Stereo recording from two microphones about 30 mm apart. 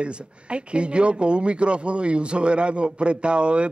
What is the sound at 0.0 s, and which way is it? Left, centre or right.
Speech, right.